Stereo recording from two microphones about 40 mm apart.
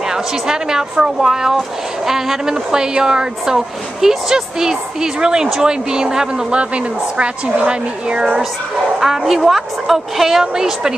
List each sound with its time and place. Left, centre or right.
0.1 s speech: centre
6.5 s a woman's voice: right
9.0 s speech: centre